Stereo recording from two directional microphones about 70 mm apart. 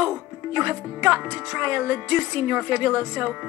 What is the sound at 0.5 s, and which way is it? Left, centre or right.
Speech, right.